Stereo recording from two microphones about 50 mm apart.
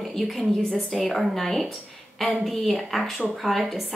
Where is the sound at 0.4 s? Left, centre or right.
Centre.